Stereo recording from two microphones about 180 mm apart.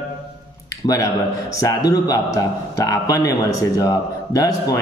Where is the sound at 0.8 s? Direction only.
20° left (ahead or behind).